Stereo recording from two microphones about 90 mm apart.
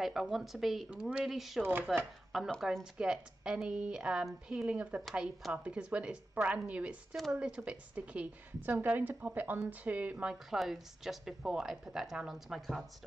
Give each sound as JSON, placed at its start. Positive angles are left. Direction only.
{"t": 0.0, "sound": "speech", "side_deg": 0}
{"t": 1.6, "sound": "speech", "side_deg": -25}
{"t": 2.6, "sound": "a woman's voice", "side_deg": -5}
{"t": 4.6, "sound": "a woman's voice", "side_deg": -15}
{"t": 10.5, "sound": "speech", "side_deg": 0}